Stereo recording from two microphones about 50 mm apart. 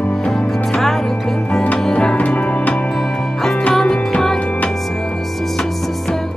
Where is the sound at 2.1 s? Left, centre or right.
Left.